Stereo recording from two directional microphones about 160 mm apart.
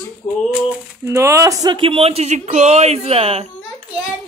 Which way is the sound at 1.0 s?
15° right (ahead or behind).